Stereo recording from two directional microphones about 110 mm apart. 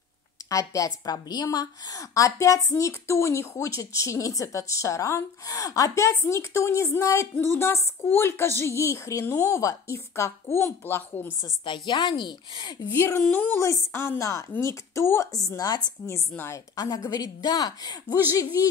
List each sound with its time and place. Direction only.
0.5 s a woman's voice: 30° left (ahead or behind)
11.6 s a woman's voice: 45° left (ahead or behind)
12.8 s a woman's voice: 20° left (ahead or behind); by 18.2 s 40° left (ahead or behind)